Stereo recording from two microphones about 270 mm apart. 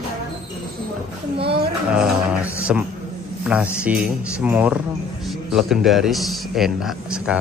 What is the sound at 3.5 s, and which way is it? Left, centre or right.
A man's voice, centre.